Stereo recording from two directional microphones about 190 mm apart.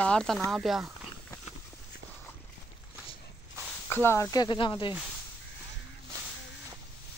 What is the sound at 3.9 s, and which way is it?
Speech, 10° left (ahead or behind).